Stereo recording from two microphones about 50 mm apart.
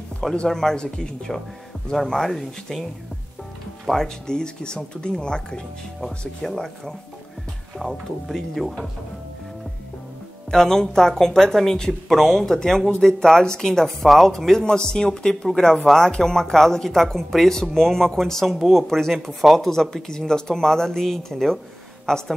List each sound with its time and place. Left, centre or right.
0.5 s speech: centre
3.9 s speech: centre
5.9 s speech: centre
10.5 s speech: centre